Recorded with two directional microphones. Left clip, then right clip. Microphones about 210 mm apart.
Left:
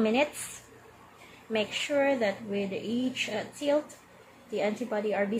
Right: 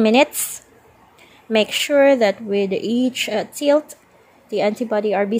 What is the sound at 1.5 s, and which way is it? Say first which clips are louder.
A woman's voice: right 12 dB; 45° right (ahead or behind).